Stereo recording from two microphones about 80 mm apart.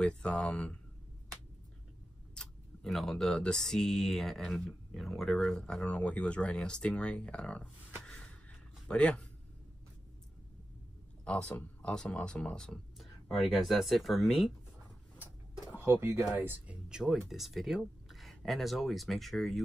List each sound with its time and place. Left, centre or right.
0.0 s speech: centre
2.3 s tick-tock: centre
2.9 s speech: centre
8.0 s a sound: centre
8.8 s speech: centre
11.2 s a man's voice: centre
15.7 s speech: right
16.9 s speech: centre